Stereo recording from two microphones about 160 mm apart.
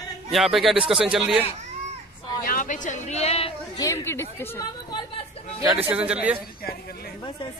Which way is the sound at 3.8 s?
15° left (ahead or behind).